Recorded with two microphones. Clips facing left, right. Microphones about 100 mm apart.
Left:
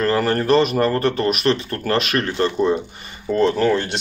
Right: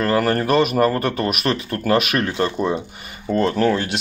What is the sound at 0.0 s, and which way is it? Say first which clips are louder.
Speech: even; 5° right (ahead or behind).